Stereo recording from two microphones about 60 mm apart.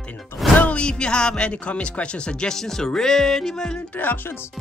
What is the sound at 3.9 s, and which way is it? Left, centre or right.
Speech, left.